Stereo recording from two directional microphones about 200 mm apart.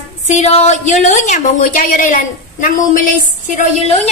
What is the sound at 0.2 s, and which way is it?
A woman's voice, 35° left (ahead or behind).